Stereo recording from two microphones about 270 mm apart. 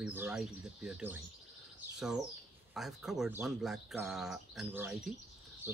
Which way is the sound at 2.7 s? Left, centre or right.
Centre.